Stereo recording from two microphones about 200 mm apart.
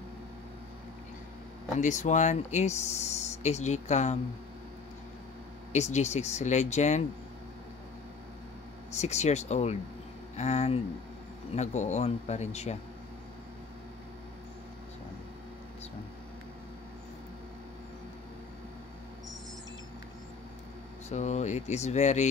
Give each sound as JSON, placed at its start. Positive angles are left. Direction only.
{"t": 1.8, "sound": "speech", "side_deg": 35}
{"t": 5.7, "sound": "speech", "side_deg": 35}
{"t": 8.9, "sound": "speech", "side_deg": 35}
{"t": 21.1, "sound": "speech", "side_deg": 35}